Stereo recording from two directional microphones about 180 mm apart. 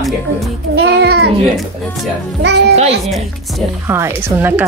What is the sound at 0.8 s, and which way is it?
Child singing, 65° right (ahead or behind).